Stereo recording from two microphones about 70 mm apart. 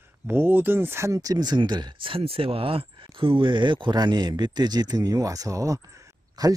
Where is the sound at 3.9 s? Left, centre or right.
Right.